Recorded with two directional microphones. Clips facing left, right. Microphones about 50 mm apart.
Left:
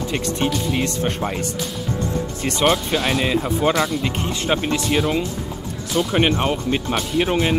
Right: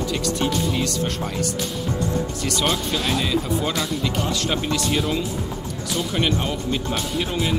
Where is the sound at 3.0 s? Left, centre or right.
Centre.